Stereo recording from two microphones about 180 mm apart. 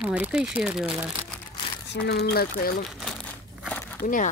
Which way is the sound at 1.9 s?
65° left (ahead or behind).